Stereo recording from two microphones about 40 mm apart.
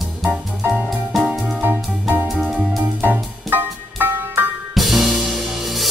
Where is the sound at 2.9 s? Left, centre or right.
Right.